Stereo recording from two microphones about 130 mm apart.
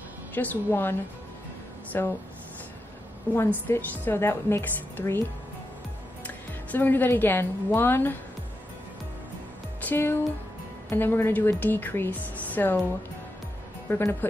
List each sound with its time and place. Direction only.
0.3 s a woman's voice: 15° left (ahead or behind)
3.3 s a woman's voice: 15° left (ahead or behind)
6.2 s a woman's voice: 15° left (ahead or behind)
9.8 s a woman's voice: 15° left (ahead or behind)
13.8 s speech: 20° left (ahead or behind)